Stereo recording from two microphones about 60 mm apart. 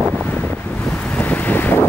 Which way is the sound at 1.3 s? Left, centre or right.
Left.